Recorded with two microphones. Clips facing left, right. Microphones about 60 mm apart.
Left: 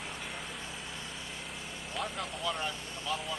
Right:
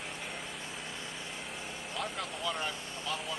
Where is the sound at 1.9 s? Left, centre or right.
Centre.